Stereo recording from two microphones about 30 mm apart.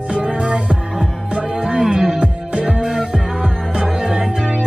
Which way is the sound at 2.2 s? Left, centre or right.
Right.